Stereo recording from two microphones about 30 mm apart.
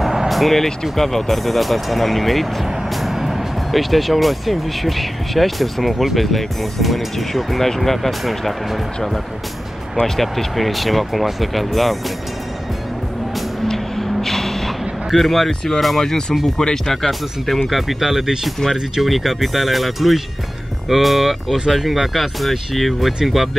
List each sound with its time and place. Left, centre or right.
0.0 s music: centre
0.3 s music: centre
0.9 s speech: centre
10.0 s speech: centre
13.9 s a sound: centre
15.0 s speech: centre
16.0 s speech: left
17.6 s speech: centre